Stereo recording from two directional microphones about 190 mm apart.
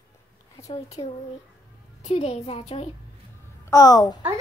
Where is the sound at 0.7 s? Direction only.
30° left (ahead or behind).